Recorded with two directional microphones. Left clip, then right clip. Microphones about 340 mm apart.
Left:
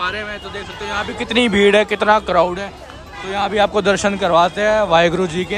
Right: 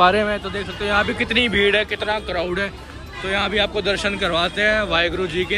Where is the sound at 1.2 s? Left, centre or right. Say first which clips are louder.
Left 3 dB; centre.